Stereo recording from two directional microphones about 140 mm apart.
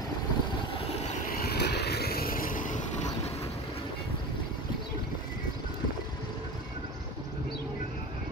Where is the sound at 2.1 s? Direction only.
90° left; by 2.8 s 70° left (ahead or behind).